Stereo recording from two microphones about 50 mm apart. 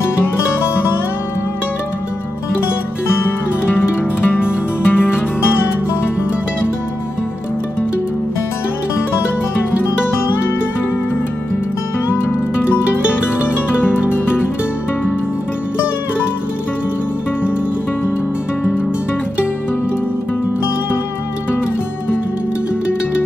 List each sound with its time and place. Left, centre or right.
3.2 s music: left
13.5 s music: right